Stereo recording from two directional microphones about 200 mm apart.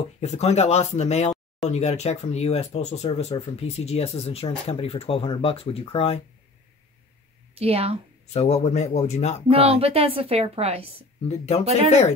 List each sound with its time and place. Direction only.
0.2 s speech: 35° left (ahead or behind)
7.5 s a woman's voice: 30° right (ahead or behind)
8.3 s speech: 30° left (ahead or behind)
9.5 s a woman's voice: 30° right (ahead or behind)
11.2 s speech: 35° left (ahead or behind)